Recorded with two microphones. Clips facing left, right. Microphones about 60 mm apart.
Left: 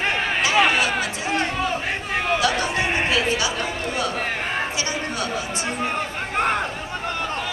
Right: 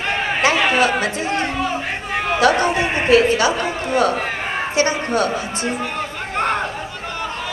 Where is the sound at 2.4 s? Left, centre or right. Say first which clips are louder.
Right 6 dB; right.